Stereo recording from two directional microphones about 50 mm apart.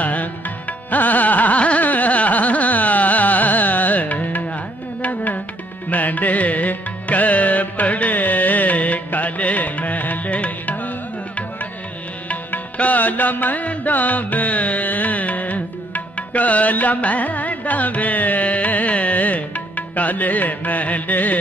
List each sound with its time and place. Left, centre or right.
0.0 s music: left
0.8 s carnatic music: left
5.0 s music: left
12.7 s music: left
20.0 s carnatic music: left